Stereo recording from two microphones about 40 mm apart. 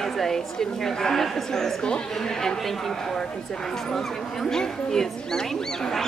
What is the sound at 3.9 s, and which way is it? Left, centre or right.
Speech, centre.